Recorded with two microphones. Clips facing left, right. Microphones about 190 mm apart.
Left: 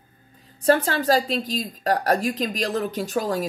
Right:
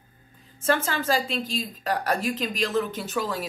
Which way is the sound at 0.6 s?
40° left (ahead or behind).